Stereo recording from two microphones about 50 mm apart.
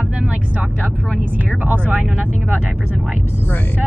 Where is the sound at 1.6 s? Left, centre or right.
Right.